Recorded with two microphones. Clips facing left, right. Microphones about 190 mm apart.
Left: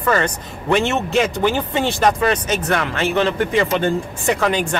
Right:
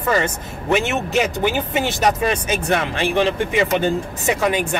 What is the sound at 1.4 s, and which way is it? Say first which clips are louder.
A man's voice: left 1 dB; 15° right (ahead or behind).